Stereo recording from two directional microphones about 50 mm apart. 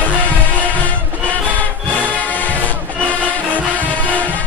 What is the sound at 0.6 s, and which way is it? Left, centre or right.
Music, left.